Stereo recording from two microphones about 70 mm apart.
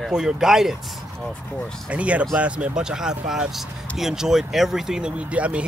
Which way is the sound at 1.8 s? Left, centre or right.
Centre.